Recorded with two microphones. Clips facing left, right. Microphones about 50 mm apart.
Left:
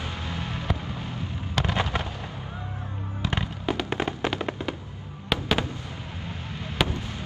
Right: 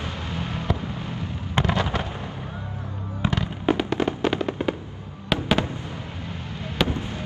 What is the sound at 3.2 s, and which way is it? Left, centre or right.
Fireworks, right.